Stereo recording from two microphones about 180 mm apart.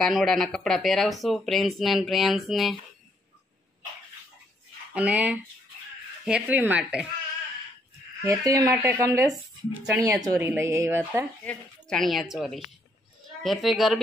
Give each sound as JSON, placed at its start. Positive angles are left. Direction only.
{"t": 0.0, "sound": "speech", "side_deg": 0}
{"t": 4.9, "sound": "speech", "side_deg": -5}
{"t": 8.2, "sound": "speech", "side_deg": -15}
{"t": 11.4, "sound": "speech", "side_deg": 0}